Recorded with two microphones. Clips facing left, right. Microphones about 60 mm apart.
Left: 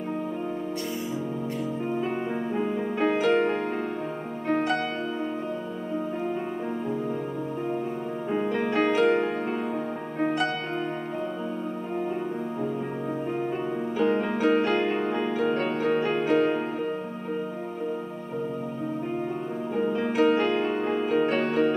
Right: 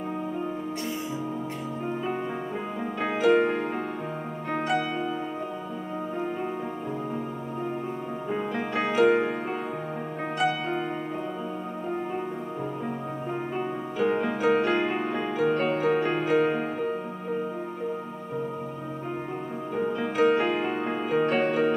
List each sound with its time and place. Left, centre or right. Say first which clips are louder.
2.5 s music: left 4 dB; centre
8.3 s music: left 4 dB; centre
13.9 s music: left 1 dB; centre
19.8 s music: left 1 dB; centre